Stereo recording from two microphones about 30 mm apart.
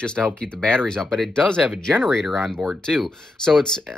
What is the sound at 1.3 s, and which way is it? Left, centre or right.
Speech, left.